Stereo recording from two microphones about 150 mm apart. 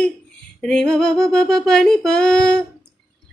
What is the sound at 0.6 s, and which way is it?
Speech, 5° left (ahead or behind).